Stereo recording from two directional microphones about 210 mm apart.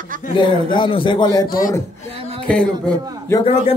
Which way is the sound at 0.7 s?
25° left (ahead or behind).